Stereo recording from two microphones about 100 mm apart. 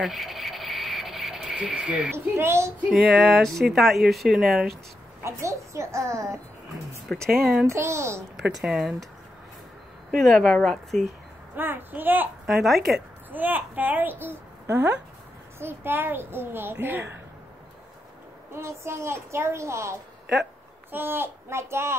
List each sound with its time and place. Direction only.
0.0 s a sound: centre (ahead or behind)
2.1 s a child's voice: 25° right (ahead or behind)
2.9 s speech: 5° right (ahead or behind)
5.2 s a child's voice: 30° right (ahead or behind)
7.1 s speech: 10° left (ahead or behind)
7.6 s a child's voice: 30° right (ahead or behind)
8.4 s speech: 5° right (ahead or behind)
10.1 s speech: centre (ahead or behind)
11.5 s a child's voice: 20° right (ahead or behind)
12.4 s speech: centre (ahead or behind)
13.3 s a child's voice: 20° right (ahead or behind)
18.5 s a child's voice: 25° right (ahead or behind)